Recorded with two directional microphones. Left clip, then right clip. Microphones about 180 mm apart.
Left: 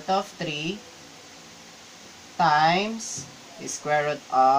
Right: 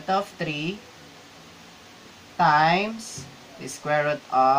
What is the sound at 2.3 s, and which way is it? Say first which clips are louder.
Speech: right 1 dB; 15° right (ahead or behind).